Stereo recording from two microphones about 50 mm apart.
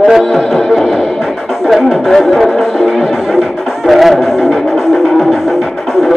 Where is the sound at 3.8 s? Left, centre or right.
Centre.